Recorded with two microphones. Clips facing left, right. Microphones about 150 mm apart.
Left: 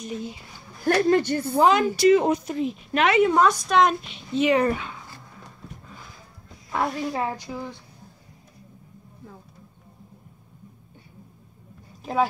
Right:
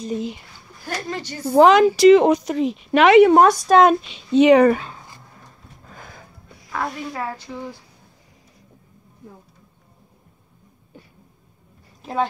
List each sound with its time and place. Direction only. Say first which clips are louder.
0.8 s a woman's voice: left 10 dB; 55° left (ahead or behind)
1.4 s speech: right 7 dB; 65° right (ahead or behind)
3.4 s a woman's voice: right 6 dB; 45° right (ahead or behind)
4.1 s speech: right 8 dB; 85° right
5.9 s a sound: right 3 dB; 55° right (ahead or behind)
6.7 s a woman's voice: left 2 dB; 20° left (ahead or behind)
12.0 s a woman's voice: even; centre (ahead or behind)